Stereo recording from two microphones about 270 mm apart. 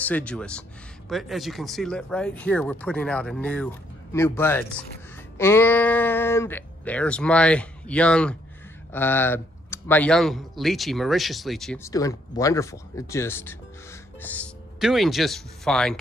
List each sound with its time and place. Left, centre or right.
0.0 s speech: centre